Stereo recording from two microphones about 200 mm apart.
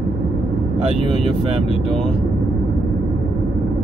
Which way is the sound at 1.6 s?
Centre (ahead or behind).